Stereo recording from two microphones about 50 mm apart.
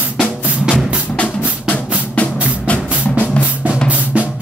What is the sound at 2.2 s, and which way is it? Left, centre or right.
Music, left.